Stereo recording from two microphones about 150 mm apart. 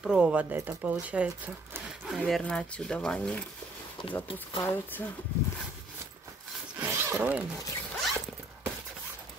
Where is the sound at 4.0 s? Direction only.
30° left (ahead or behind).